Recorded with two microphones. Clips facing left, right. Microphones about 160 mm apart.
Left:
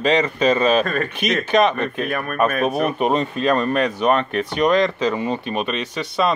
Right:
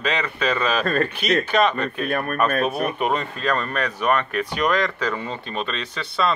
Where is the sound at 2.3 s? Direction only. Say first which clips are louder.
Left 4 dB; 25° left (ahead or behind).